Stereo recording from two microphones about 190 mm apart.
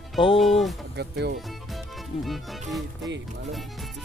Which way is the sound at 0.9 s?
60° right (ahead or behind).